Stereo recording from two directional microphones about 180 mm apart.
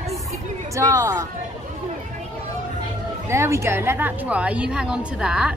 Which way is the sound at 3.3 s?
15° right (ahead or behind).